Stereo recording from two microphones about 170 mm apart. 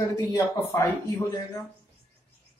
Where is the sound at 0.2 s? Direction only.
15° left (ahead or behind).